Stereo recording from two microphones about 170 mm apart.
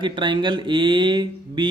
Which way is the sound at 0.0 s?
30° right (ahead or behind).